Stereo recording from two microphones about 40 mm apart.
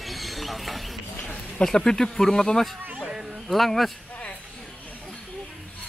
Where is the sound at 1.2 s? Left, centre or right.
Left.